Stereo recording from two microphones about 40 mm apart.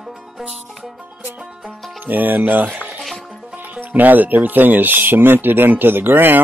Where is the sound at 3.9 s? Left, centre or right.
Right.